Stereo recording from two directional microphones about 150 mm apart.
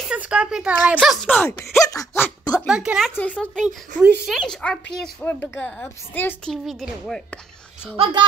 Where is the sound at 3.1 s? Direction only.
10° left (ahead or behind).